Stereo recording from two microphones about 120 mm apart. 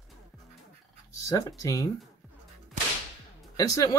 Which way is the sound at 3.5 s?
30° left (ahead or behind).